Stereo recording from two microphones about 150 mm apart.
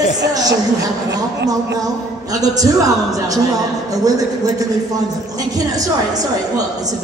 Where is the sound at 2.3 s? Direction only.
25° right (ahead or behind).